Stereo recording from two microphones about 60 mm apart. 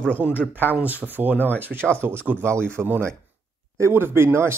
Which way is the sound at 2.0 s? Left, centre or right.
Right.